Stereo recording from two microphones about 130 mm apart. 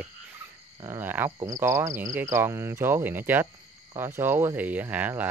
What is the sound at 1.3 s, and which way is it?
Cricket, 30° right (ahead or behind).